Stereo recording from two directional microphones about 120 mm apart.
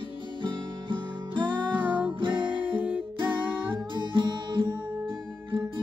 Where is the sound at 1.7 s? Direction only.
15° right (ahead or behind).